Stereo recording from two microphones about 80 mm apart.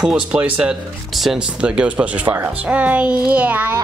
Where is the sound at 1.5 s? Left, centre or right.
Centre.